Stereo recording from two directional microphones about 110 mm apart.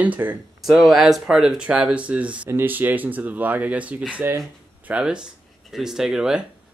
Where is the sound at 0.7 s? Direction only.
Centre (ahead or behind).